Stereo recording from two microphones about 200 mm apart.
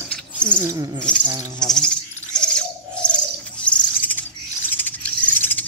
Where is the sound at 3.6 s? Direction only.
10° left (ahead or behind).